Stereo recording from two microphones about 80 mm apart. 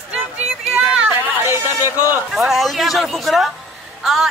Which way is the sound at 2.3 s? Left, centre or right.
Centre.